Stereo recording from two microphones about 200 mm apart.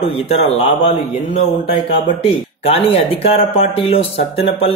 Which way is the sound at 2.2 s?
30° left (ahead or behind).